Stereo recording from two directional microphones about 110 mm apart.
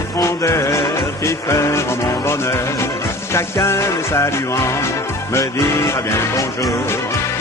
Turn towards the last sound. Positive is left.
turn(degrees=30)  # may be behind; listen again after turning